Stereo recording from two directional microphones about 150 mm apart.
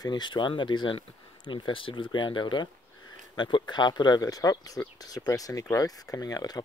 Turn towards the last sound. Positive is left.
turn(degrees=25)  # may be behind; listen again after turning